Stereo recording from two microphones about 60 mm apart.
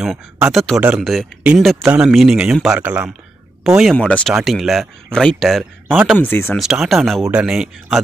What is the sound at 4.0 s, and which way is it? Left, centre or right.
Speech, left.